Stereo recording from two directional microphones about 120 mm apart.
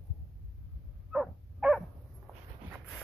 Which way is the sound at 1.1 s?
5° right (ahead or behind).